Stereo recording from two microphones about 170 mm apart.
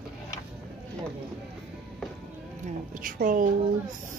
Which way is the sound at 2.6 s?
50° right (ahead or behind).